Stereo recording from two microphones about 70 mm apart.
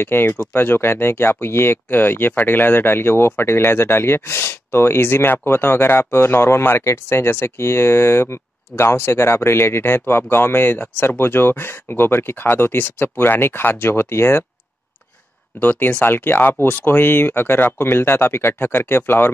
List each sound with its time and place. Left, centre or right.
0.0 s speech: left
15.6 s speech: left